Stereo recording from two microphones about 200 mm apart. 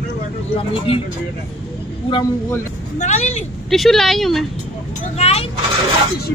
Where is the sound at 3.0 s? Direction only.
35° left (ahead or behind).